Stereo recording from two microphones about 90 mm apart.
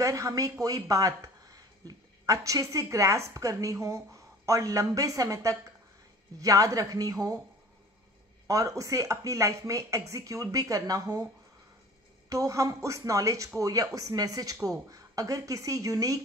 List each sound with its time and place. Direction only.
0.0 s speech: 40° right (ahead or behind)
8.5 s speech: 40° right (ahead or behind)
12.3 s speech: 35° right (ahead or behind)